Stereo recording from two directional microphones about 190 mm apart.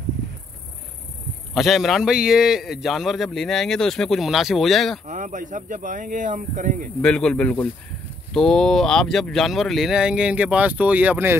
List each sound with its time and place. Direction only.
1.5 s a man's voice: centre (ahead or behind)
5.0 s speech: 40° right (ahead or behind)
7.0 s a man's voice: 5° left (ahead or behind)